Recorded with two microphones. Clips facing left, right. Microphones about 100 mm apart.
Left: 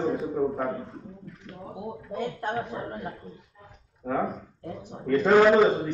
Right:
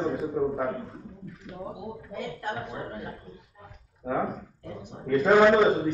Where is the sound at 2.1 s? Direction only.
30° left (ahead or behind).